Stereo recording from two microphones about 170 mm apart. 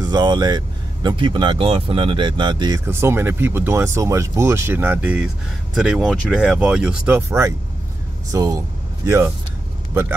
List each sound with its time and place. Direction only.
0.0 s speech: 25° right (ahead or behind)